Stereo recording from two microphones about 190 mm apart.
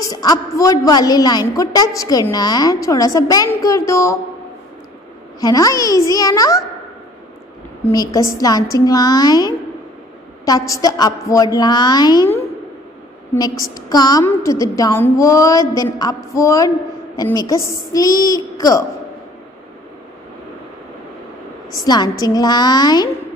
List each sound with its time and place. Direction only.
0.0 s a woman's voice: 20° left (ahead or behind)
5.4 s a woman's voice: 20° left (ahead or behind)
7.9 s a woman's voice: 20° left (ahead or behind)
13.3 s a woman's voice: 15° left (ahead or behind)
21.8 s a woman's voice: 20° left (ahead or behind)